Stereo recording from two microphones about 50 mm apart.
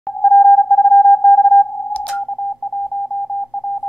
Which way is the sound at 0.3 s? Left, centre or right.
Left.